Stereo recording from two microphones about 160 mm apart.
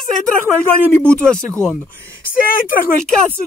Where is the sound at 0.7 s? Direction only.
5° left (ahead or behind).